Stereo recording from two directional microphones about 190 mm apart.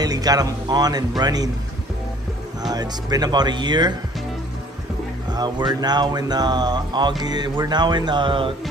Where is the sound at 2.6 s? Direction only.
20° right (ahead or behind).